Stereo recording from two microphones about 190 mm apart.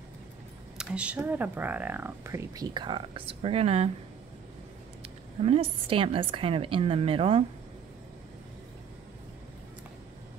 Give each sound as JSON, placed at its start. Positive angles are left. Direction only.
{"t": 0.7, "sound": "speech", "side_deg": -5}
{"t": 5.4, "sound": "a woman's voice", "side_deg": -30}